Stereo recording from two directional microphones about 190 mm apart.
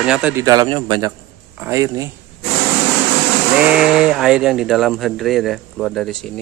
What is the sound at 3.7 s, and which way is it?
Speech, 5° right (ahead or behind).